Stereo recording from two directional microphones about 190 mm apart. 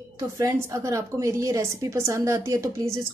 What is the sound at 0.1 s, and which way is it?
A woman's voice, 15° right (ahead or behind).